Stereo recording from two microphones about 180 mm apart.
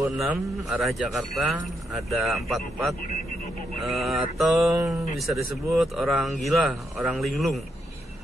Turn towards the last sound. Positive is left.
turn(degrees=0)  # may be behind; listen again after turning